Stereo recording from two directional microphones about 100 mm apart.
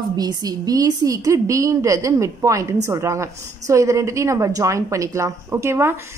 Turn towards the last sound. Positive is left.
turn(degrees=-25)  # may be behind; listen again after turning